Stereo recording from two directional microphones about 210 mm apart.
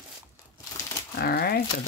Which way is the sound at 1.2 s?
50° left (ahead or behind).